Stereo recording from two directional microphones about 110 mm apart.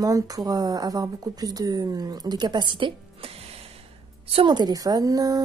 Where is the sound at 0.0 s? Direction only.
35° right (ahead or behind); by 3.6 s 55° right (ahead or behind).